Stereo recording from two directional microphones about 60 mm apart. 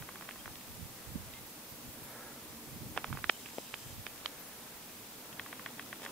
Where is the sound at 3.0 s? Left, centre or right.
Centre.